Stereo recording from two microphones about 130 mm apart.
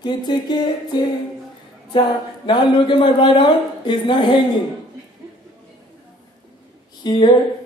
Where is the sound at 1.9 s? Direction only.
40° left (ahead or behind).